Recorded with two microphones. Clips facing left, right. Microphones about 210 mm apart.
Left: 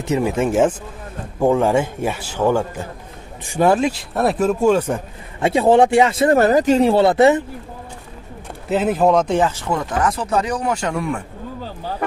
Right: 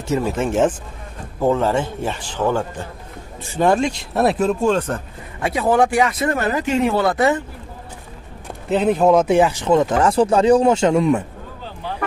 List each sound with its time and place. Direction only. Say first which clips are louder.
0.0 s speech: left 2 dB; 15° left (ahead or behind)
5.4 s speech: left 4 dB; 25° left (ahead or behind)
8.6 s speech: right 1 dB; centre (ahead or behind); by 11.2 s 20° right (ahead or behind)